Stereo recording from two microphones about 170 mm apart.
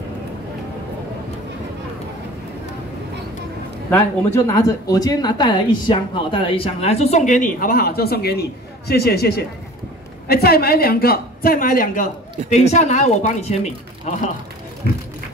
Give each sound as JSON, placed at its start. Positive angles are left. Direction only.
{"t": 3.9, "sound": "a woman's voice", "side_deg": 15}